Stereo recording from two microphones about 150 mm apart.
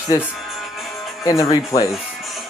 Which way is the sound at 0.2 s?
Centre (ahead or behind).